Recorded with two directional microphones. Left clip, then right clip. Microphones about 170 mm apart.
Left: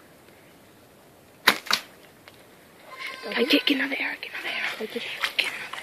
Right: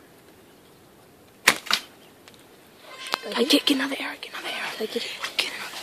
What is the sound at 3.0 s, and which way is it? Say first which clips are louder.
Speech: right 1 dB; 15° right (ahead or behind).